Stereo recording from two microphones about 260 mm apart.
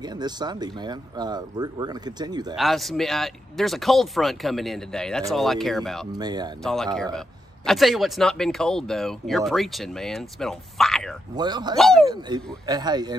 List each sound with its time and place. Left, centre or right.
0.0 s speech: centre
2.5 s speech: centre
6.1 s speech: centre
6.6 s speech: centre
11.3 s speech: centre
11.7 s speech: centre
12.1 s speech: centre